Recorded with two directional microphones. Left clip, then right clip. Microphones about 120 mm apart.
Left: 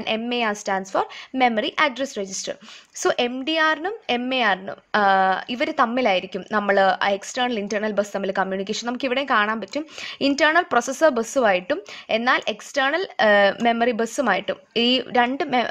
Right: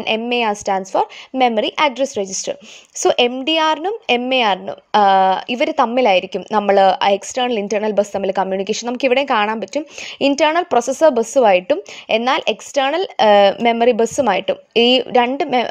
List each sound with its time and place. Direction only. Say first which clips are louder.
0.0 s a woman's voice: right 6 dB; 40° right (ahead or behind)